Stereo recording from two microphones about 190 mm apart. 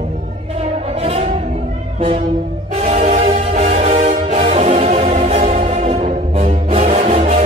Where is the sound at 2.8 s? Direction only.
35° right (ahead or behind).